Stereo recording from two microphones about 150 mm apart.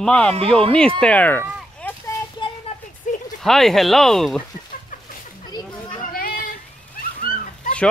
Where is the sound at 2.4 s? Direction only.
30° left (ahead or behind).